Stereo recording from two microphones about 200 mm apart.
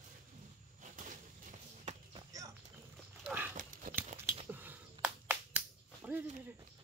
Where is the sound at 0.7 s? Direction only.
40° right (ahead or behind).